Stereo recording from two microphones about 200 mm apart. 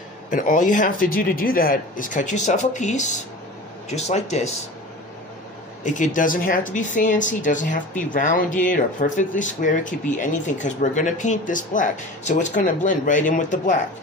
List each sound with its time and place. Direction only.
0.3 s speech: 40° left (ahead or behind)
5.9 s speech: 40° left (ahead or behind)